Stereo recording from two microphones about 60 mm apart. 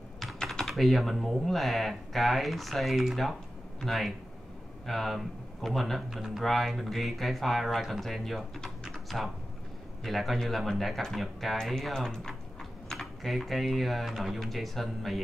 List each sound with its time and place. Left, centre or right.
0.2 s typing: centre
0.6 s speech: centre
8.6 s typing: centre
10.0 s speech: centre